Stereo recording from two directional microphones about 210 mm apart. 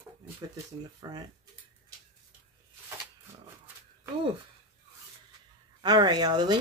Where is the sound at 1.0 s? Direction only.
20° right (ahead or behind).